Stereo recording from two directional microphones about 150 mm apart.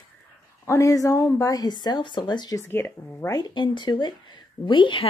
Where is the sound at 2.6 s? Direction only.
15° left (ahead or behind).